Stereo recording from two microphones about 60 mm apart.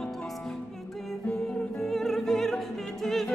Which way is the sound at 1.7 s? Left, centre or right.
Centre.